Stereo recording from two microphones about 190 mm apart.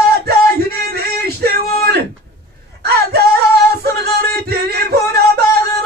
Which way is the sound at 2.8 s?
55° right (ahead or behind).